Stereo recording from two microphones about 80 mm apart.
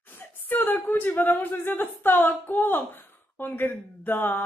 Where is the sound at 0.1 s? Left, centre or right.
Left.